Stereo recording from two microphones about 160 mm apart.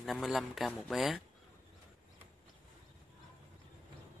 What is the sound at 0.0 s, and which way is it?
Speech, centre (ahead or behind).